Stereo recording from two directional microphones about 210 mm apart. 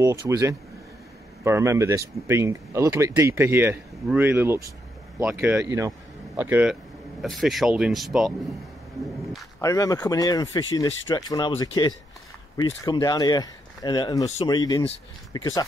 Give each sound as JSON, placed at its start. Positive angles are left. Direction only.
{"t": 0.0, "sound": "speech", "side_deg": -15}
{"t": 9.6, "sound": "speech", "side_deg": 15}